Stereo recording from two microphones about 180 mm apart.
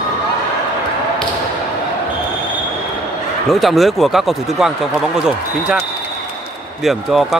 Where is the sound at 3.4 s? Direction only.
Centre (ahead or behind).